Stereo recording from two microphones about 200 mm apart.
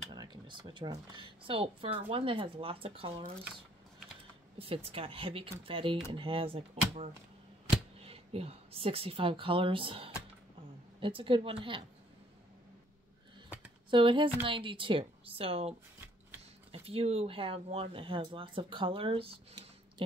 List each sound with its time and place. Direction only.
0.1 s speech: 20° right (ahead or behind)
4.6 s speech: 30° right (ahead or behind)
13.8 s speech: 25° right (ahead or behind)
16.7 s speech: 30° right (ahead or behind)